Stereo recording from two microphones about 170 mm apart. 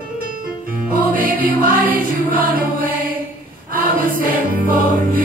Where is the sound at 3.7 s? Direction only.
55° right (ahead or behind).